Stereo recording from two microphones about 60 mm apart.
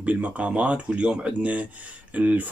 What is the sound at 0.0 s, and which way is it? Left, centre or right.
Speech, right.